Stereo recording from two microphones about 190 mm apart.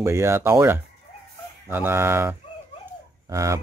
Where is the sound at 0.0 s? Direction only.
15° right (ahead or behind).